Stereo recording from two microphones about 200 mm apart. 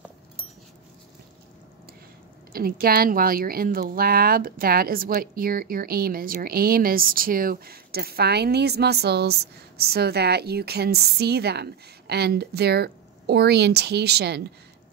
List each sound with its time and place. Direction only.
2.5 s speech: 50° right (ahead or behind)